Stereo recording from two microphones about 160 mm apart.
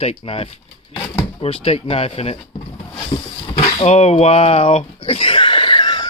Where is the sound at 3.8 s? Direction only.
40° left (ahead or behind).